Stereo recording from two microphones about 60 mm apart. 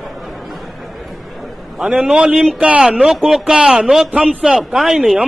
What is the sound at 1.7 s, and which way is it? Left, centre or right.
A man's voice, centre.